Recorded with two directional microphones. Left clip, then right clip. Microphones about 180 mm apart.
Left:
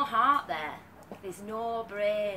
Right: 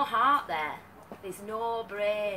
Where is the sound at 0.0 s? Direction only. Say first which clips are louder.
Even; 5° left (ahead or behind).